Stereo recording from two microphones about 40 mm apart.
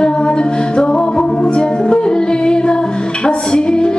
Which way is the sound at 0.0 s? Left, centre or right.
Left.